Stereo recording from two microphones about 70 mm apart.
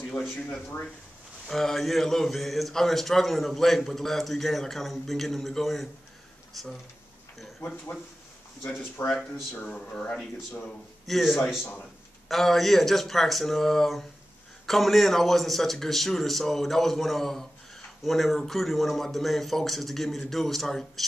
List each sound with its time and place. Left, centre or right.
1.5 s a man's voice: centre
7.6 s speech: centre
9.0 s speech: left
9.7 s speech: centre
11.1 s a man's voice: centre